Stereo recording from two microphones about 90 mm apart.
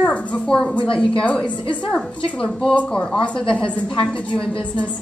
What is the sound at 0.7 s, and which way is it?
Speech, 70° left (ahead or behind).